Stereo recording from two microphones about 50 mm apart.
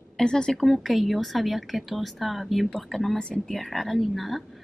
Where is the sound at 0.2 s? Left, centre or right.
Centre.